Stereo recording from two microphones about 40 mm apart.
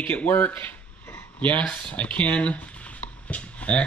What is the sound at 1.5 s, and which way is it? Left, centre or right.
Speech, left.